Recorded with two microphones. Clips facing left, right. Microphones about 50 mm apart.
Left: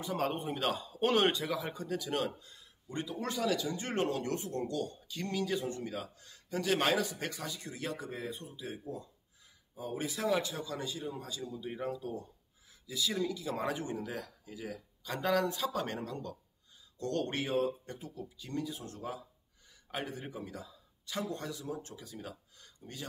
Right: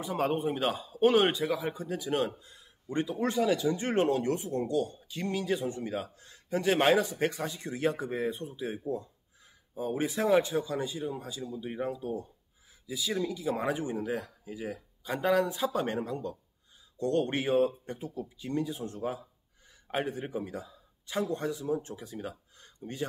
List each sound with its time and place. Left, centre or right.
0.0 s a man's voice: centre; by 8.7 s right
9.8 s a man's voice: right